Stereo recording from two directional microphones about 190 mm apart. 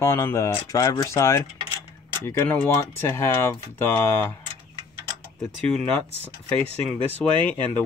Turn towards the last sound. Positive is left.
turn(degrees=10)  # may be behind; listen again after turning